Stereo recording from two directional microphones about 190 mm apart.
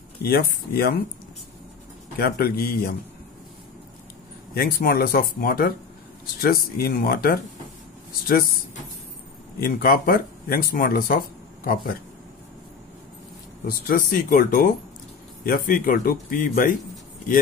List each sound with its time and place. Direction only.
0.2 s speech: 55° left (ahead or behind)
2.1 s speech: 55° left (ahead or behind)
4.6 s speech: 50° left (ahead or behind)
9.6 s speech: 50° left (ahead or behind)
13.7 s speech: 50° left (ahead or behind)